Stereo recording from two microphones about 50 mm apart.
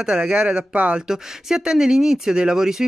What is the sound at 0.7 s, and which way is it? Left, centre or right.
Speech, right.